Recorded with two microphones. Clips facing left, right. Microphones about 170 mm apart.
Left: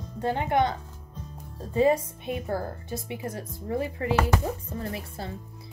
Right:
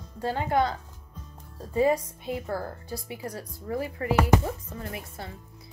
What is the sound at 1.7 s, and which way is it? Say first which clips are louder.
A woman's voice: left 1 dB; 25° left (ahead or behind).